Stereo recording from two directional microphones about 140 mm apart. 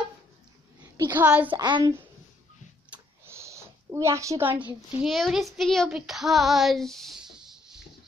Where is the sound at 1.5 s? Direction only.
35° right (ahead or behind).